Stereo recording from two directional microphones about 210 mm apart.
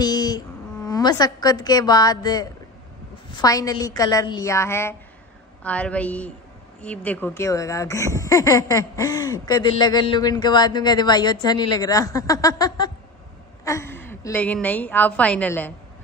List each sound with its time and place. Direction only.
0.0 s insect: 20° left (ahead or behind)
0.8 s speech: 20° left (ahead or behind)